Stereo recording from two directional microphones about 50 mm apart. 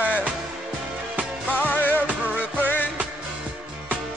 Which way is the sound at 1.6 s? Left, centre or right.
Left.